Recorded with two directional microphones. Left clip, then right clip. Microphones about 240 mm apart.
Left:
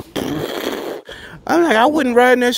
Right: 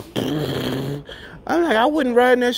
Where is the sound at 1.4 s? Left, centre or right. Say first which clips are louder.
Left 4 dB; left.